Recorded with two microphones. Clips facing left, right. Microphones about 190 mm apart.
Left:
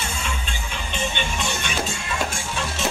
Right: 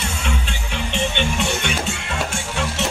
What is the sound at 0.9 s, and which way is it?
Music, 70° right (ahead or behind).